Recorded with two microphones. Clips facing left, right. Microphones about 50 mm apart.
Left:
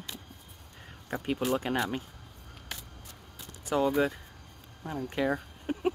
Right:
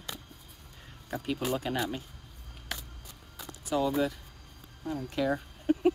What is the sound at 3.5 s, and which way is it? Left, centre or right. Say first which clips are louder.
Speech: left 2 dB; left.